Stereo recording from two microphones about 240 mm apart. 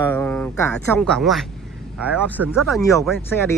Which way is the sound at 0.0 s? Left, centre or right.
Centre.